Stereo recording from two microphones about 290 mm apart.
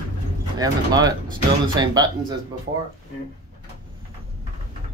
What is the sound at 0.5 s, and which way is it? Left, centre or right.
Speech, centre.